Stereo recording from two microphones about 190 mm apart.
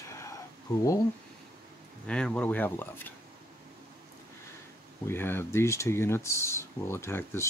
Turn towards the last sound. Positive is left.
turn(degrees=15)  # may be behind; listen again after turning